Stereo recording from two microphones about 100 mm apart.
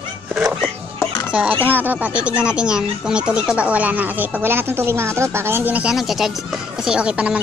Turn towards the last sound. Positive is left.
turn(degrees=-10)  # may be behind; listen again after turning